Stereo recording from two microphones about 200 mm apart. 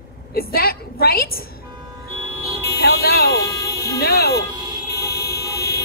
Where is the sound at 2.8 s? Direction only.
50° left (ahead or behind).